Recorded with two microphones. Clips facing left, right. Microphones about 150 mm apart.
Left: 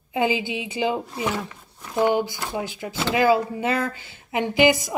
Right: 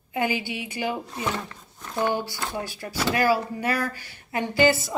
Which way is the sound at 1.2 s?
10° left (ahead or behind).